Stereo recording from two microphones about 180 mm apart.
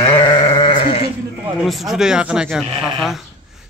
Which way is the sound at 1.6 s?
Centre (ahead or behind).